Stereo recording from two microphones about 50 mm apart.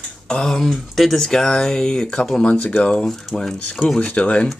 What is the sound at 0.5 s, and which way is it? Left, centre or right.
Speech, centre.